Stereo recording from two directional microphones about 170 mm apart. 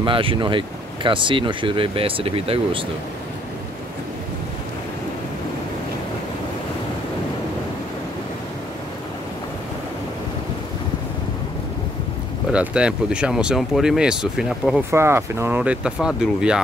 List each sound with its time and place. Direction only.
0.0 s speech: 30° right (ahead or behind)
12.5 s speech: 5° right (ahead or behind)
14.9 s speech: 15° right (ahead or behind)